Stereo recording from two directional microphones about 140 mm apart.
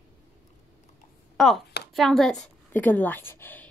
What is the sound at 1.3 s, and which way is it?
A woman's voice, centre (ahead or behind).